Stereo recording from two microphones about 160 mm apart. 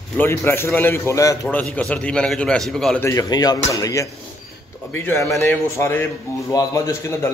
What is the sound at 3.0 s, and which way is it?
A man's voice, 20° left (ahead or behind).